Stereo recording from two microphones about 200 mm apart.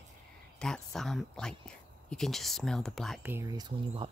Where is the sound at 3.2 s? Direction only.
10° right (ahead or behind).